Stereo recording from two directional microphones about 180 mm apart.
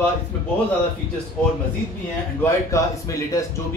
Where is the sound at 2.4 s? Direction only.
15° left (ahead or behind).